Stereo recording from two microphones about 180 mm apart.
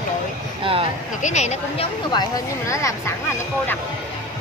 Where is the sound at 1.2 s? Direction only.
40° left (ahead or behind).